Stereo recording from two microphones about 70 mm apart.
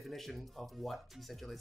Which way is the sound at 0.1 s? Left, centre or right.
Centre.